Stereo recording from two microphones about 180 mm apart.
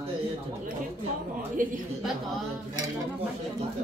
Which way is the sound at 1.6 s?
50° right (ahead or behind).